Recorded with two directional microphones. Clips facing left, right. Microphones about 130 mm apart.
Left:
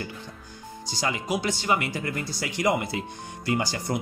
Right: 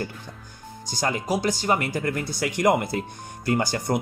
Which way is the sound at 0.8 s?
45° right (ahead or behind).